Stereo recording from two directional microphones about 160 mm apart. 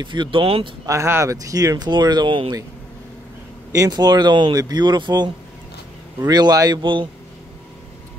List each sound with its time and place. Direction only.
0.0 s speech: 30° right (ahead or behind)
0.8 s speech: 15° right (ahead or behind)
3.7 s speech: 25° right (ahead or behind)